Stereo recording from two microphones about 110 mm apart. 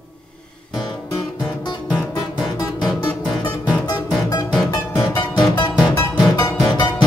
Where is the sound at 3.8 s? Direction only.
35° left (ahead or behind).